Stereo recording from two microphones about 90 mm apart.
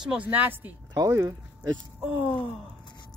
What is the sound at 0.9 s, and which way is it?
Speech, 35° right (ahead or behind).